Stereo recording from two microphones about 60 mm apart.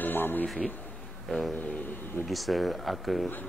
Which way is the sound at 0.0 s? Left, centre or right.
Left.